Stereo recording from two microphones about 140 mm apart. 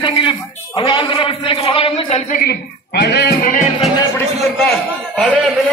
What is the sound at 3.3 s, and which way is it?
Music, 80° left.